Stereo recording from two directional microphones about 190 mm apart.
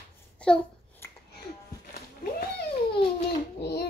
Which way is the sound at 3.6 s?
55° left (ahead or behind).